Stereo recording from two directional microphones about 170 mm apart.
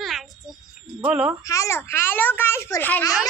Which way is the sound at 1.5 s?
15° left (ahead or behind).